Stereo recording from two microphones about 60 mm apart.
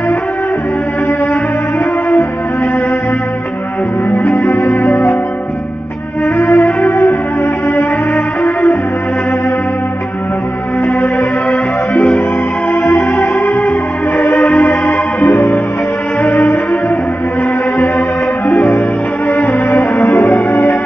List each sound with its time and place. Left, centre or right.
4.5 s music: left
6.3 s music: left
11.9 s music: left
12.8 s music: left
13.6 s music: left
14.7 s music: left
16.2 s music: left
19.4 s music: left
20.3 s music: left